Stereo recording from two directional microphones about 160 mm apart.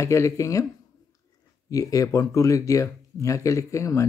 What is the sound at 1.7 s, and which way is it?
Speech, 20° left (ahead or behind).